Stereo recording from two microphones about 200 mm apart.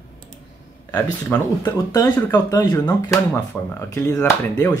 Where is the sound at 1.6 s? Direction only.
20° left (ahead or behind).